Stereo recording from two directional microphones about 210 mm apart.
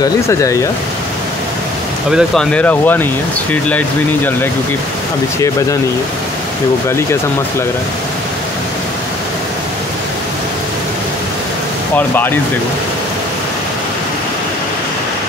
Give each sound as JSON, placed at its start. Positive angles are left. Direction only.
{"t": 0.0, "sound": "speech", "side_deg": 15}
{"t": 2.0, "sound": "speech", "side_deg": 0}